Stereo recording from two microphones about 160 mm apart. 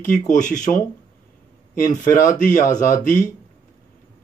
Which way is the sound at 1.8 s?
55° left (ahead or behind).